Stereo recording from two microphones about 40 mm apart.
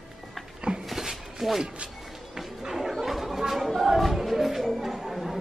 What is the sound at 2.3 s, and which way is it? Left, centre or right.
Music, centre.